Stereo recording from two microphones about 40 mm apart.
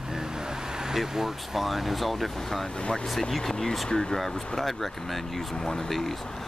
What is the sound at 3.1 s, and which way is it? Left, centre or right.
Speech, centre.